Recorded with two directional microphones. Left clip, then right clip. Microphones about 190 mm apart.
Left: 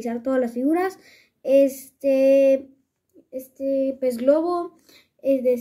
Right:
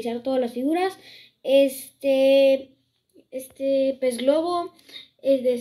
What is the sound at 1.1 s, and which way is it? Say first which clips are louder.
Speech: left 1 dB; 60° left (ahead or behind).